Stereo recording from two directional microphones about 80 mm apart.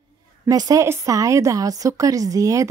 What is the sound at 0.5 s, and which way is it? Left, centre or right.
Speech, right.